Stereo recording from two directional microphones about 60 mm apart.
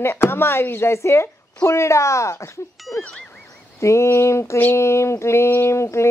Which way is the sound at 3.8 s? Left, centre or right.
Left.